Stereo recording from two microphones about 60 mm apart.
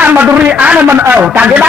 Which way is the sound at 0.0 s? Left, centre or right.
Right.